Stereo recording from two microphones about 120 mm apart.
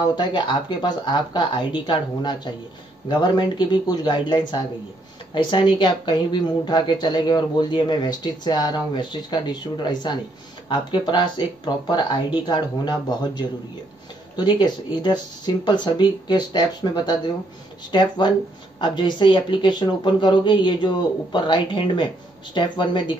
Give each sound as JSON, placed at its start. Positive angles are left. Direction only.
{"t": 0.0, "sound": "speech", "side_deg": 35}